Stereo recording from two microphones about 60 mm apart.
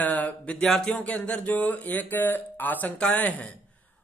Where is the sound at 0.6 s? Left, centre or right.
Centre.